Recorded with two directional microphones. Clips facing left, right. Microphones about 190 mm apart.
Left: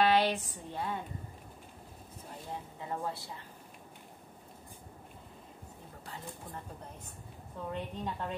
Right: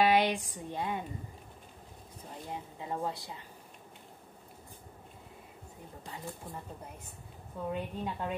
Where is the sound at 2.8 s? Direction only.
15° right (ahead or behind).